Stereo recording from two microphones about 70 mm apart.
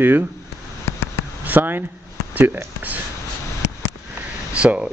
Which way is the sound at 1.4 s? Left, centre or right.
Right.